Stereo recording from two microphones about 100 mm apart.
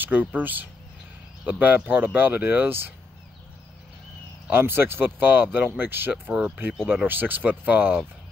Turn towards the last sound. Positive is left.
turn(degrees=-15)  # may be behind; listen again after turning